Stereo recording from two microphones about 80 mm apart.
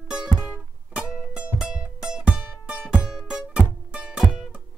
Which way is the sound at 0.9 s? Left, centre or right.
Centre.